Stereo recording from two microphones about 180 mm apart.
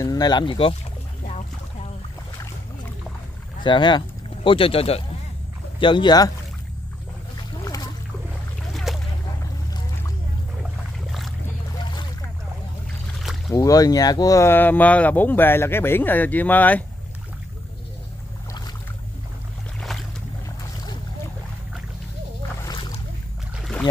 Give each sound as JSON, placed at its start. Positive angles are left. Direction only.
{"t": 0.0, "sound": "speech", "side_deg": 20}
{"t": 3.6, "sound": "speech", "side_deg": 25}
{"t": 7.6, "sound": "boat", "side_deg": 20}
{"t": 8.9, "sound": "boat", "side_deg": 0}
{"t": 10.6, "sound": "a sound", "side_deg": 0}
{"t": 11.8, "sound": "boat", "side_deg": 25}
{"t": 13.5, "sound": "speech", "side_deg": 20}
{"t": 19.8, "sound": "boat", "side_deg": 0}
{"t": 23.6, "sound": "boat", "side_deg": 5}